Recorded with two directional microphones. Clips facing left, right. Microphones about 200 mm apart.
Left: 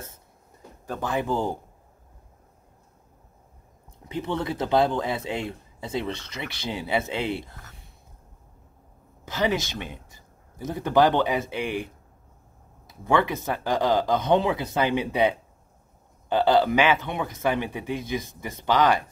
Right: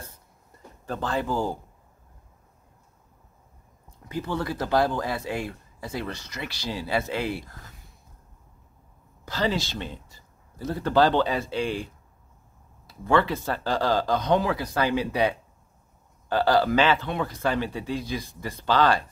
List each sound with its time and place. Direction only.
0.8 s speech: 15° left (ahead or behind)
4.1 s speech: 25° left (ahead or behind)
9.2 s speech: 20° left (ahead or behind)